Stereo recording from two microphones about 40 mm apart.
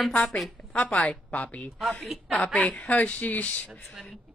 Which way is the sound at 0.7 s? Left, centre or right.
Left.